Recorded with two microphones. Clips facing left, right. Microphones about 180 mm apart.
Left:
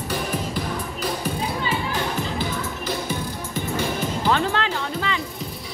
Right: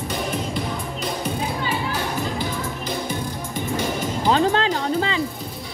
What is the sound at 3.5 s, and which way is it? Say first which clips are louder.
Music: right 1 dB; 50° right (ahead or behind).